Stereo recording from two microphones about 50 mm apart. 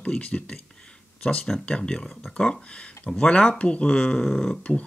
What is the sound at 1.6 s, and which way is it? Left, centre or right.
Speech, centre.